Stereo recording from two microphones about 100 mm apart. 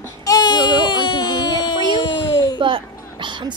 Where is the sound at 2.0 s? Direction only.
55° left (ahead or behind).